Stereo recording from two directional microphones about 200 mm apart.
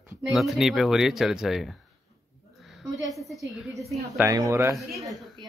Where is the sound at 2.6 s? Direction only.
Centre (ahead or behind).